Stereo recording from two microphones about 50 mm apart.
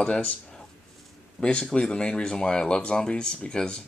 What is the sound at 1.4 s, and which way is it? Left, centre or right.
Speech, centre.